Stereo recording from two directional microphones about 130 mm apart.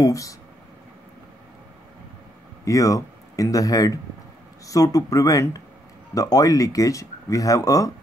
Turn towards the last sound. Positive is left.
turn(degrees=25)  # may be behind; listen again after turning